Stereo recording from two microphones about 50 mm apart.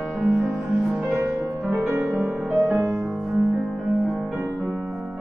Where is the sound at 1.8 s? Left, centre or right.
Right.